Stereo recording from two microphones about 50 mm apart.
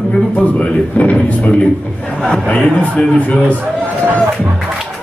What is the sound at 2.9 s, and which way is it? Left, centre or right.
Speech, left.